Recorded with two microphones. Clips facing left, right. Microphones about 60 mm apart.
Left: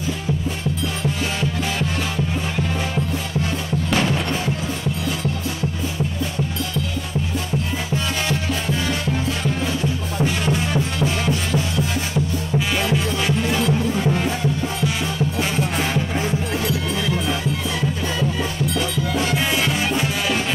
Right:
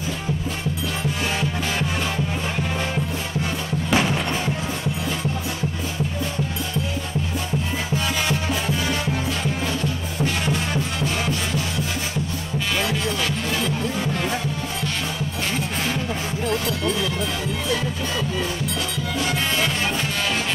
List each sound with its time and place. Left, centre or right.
3.9 s music: centre
10.4 s music: centre
13.5 s music: centre
16.6 s music: centre
19.3 s music: centre